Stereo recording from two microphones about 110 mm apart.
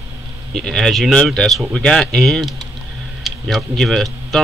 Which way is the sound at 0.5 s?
Centre (ahead or behind).